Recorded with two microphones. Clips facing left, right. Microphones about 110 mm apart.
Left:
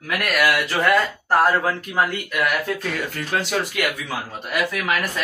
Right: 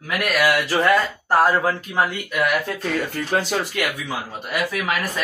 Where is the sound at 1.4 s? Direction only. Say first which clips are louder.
Right 1 dB; 10° right (ahead or behind).